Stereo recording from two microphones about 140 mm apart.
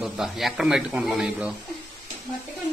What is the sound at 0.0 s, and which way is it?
Speech, centre (ahead or behind).